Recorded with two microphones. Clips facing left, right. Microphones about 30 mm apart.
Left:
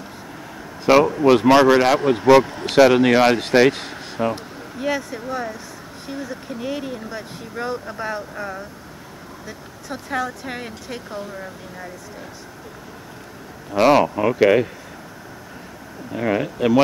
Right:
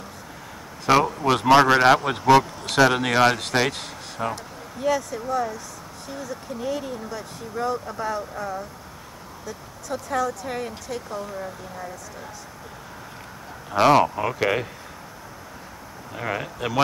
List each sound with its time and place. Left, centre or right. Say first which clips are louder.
0.8 s speech: left 5 dB; centre
2.1 s speech: left 4 dB; centre; by 11.2 s left
13.8 s speech: left 2 dB; centre
16.1 s speech: left 7 dB; centre